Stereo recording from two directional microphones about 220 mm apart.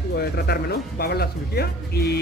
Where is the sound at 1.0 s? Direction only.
45° left (ahead or behind).